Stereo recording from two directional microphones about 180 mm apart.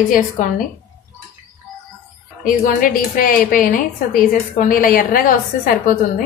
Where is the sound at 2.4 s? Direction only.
50° left (ahead or behind).